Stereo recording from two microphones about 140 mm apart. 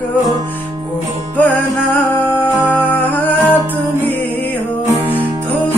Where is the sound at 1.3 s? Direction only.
15° left (ahead or behind).